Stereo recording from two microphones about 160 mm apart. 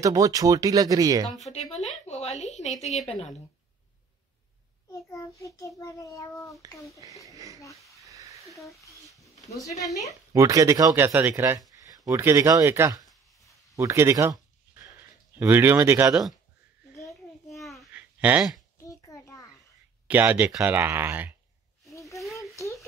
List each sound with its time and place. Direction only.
0.0 s speech: 20° right (ahead or behind)
1.5 s a woman's voice: 40° left (ahead or behind)
5.1 s a child's voice: 20° left (ahead or behind)
7.2 s speech: 20° right (ahead or behind)
8.0 s a sound: 20° right (ahead or behind)
10.3 s speech: 20° right (ahead or behind)
15.3 s speech: 15° right (ahead or behind)
17.5 s babbling: centre (ahead or behind)
17.9 s a sound: 10° right (ahead or behind)
18.9 s a sound: 20° left (ahead or behind)
20.1 s speech: 10° right (ahead or behind)
22.1 s a sound: 20° left (ahead or behind)